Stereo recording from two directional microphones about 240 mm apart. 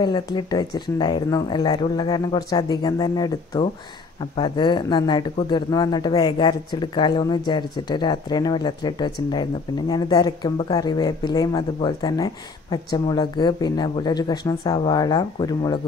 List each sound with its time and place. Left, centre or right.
0.0 s speech: centre